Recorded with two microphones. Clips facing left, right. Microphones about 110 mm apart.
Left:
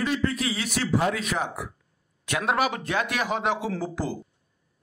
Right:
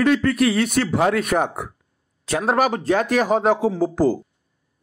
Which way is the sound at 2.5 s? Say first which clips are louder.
Right 7 dB; 40° right (ahead or behind).